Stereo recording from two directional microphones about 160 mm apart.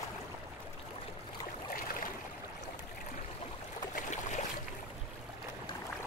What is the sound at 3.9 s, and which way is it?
Boat, 50° left (ahead or behind).